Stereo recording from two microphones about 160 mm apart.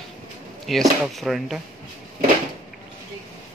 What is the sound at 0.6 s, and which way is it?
Speech, centre (ahead or behind).